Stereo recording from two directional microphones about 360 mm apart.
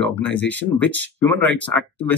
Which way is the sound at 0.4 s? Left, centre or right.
Centre.